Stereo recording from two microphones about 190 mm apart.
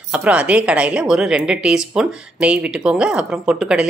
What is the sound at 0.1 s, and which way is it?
A woman's voice, 5° right (ahead or behind).